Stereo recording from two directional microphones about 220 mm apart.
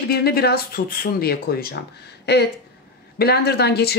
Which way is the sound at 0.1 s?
45° left (ahead or behind).